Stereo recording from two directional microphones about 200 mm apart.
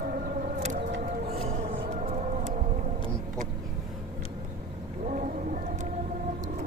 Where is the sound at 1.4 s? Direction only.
30° right (ahead or behind).